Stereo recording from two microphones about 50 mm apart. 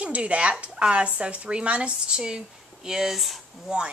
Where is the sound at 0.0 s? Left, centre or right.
Right; by 3.3 s centre.